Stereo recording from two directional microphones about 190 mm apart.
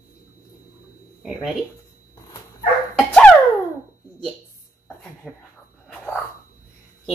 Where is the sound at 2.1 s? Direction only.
20° left (ahead or behind).